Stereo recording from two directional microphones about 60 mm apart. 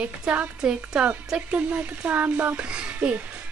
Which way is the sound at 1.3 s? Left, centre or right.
Centre.